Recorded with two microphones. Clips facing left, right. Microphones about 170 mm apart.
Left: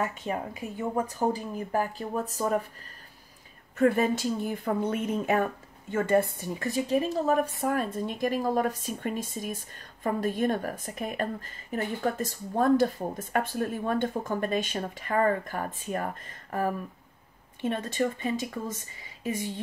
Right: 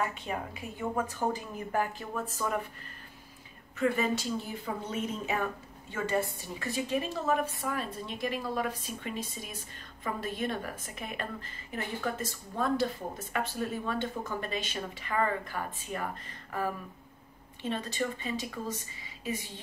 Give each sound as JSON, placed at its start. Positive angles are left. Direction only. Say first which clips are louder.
{"t": 0.0, "sound": "speech", "louder": "left 3 dB", "side_deg": 40}
{"t": 3.7, "sound": "a woman's voice", "louder": "left 5 dB", "side_deg": 50}